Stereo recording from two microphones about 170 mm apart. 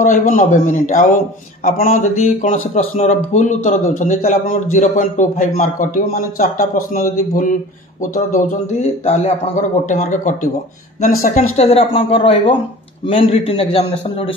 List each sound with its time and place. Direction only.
0.0 s a man's voice: 50° left (ahead or behind)
9.0 s a man's voice: 40° left (ahead or behind)